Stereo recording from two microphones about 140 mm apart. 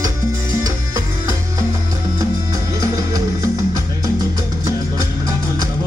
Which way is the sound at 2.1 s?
25° right (ahead or behind).